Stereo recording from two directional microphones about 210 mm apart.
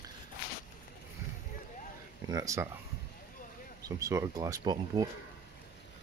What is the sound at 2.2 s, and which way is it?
Speech, 15° right (ahead or behind).